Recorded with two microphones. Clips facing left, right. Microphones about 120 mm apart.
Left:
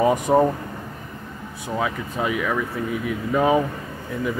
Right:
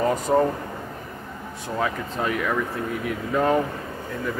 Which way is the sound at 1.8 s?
5° left (ahead or behind).